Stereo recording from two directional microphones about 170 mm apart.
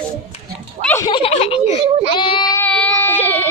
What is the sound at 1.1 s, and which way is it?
Speech, 30° left (ahead or behind).